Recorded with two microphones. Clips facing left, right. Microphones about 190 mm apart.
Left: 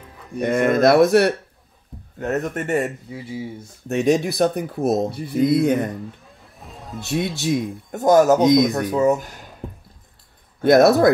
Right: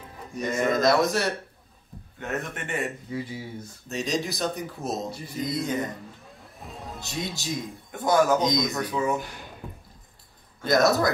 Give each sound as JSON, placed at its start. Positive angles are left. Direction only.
{"t": 0.4, "sound": "speech", "side_deg": 60}
{"t": 2.1, "sound": "speech", "side_deg": 40}
{"t": 3.9, "sound": "speech", "side_deg": 60}
{"t": 6.4, "sound": "music", "side_deg": 0}
{"t": 7.1, "sound": "speech", "side_deg": 65}
{"t": 7.9, "sound": "speech", "side_deg": 45}
{"t": 8.4, "sound": "speech", "side_deg": 65}
{"t": 8.8, "sound": "speech", "side_deg": 40}
{"t": 10.6, "sound": "speech", "side_deg": 60}